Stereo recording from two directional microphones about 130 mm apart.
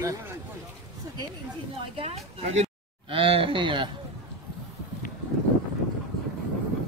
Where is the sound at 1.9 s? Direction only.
50° right (ahead or behind).